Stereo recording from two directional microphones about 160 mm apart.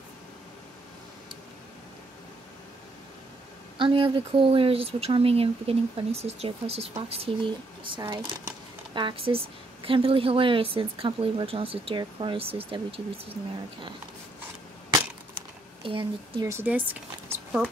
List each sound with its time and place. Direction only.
3.7 s speech: 30° right (ahead or behind)
8.9 s speech: 35° right (ahead or behind)
15.3 s a sound: 30° right (ahead or behind)
16.4 s speech: 15° right (ahead or behind)